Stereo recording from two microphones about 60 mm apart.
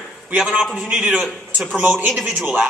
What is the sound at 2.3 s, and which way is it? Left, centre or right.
Speech, right.